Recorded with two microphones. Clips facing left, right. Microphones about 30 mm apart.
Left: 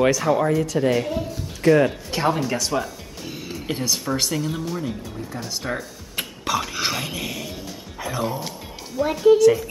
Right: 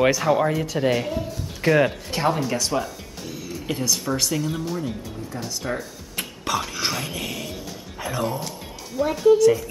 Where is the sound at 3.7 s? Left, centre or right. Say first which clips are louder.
Even; left.